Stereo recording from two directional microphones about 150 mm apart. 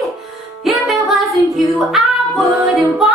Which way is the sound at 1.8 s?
Centre (ahead or behind).